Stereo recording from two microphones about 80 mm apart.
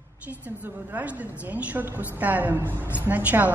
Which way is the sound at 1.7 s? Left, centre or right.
Right.